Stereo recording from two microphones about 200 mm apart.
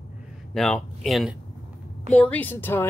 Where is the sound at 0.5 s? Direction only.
5° left (ahead or behind).